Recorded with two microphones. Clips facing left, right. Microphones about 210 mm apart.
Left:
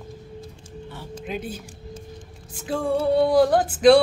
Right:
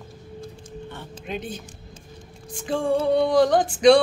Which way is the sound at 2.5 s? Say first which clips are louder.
Right 1 dB; 5° left (ahead or behind).